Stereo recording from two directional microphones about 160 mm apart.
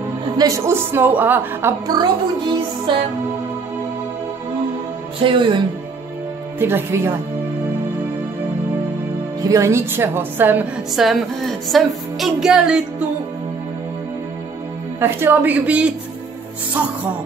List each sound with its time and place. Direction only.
0.4 s a woman's voice: 20° right (ahead or behind)
2.0 s music: 30° right (ahead or behind)
5.2 s speech: 30° right (ahead or behind)
6.6 s a woman's voice: 15° right (ahead or behind)
9.4 s a woman's voice: 20° right (ahead or behind)
11.1 s speech: centre (ahead or behind)
15.0 s a woman's voice: 15° right (ahead or behind)